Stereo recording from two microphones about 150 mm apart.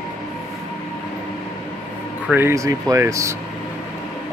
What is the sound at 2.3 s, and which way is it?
Speech, 15° right (ahead or behind).